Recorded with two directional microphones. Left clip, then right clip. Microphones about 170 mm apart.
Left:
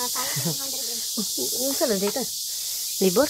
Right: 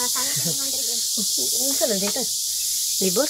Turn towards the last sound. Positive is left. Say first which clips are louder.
# left 1 dB
turn(degrees=25)  # may be behind; listen again after turning